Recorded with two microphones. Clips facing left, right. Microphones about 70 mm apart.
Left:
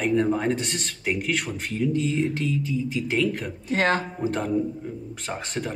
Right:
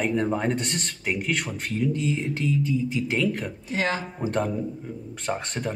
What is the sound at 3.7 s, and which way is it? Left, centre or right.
Speech, left.